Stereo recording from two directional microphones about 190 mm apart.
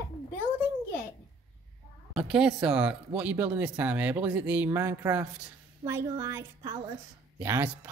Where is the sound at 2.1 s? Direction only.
5° right (ahead or behind).